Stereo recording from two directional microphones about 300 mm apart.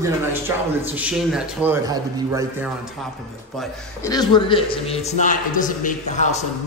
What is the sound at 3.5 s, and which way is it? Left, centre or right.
Speech, centre.